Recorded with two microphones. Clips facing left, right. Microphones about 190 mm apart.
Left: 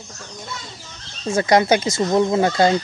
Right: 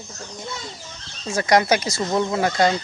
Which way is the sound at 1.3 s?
25° left (ahead or behind).